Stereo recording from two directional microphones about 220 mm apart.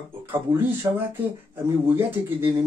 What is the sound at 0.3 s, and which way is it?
Speech, 10° right (ahead or behind).